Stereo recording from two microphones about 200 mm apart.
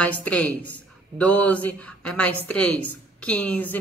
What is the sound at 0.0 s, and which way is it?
A woman's voice, 5° left (ahead or behind).